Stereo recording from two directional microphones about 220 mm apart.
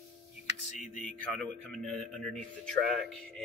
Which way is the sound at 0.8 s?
35° left (ahead or behind).